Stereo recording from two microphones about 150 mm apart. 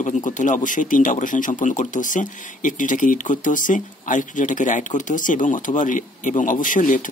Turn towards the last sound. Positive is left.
turn(degrees=60)  # may be behind; listen again after turning